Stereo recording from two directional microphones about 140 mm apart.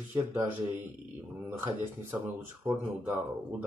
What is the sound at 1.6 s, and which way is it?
Speech, 15° right (ahead or behind).